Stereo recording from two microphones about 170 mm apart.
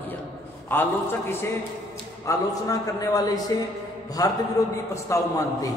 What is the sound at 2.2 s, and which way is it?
A man's voice, 20° left (ahead or behind).